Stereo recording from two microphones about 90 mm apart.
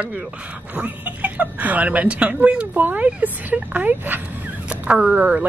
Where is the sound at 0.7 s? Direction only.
15° right (ahead or behind).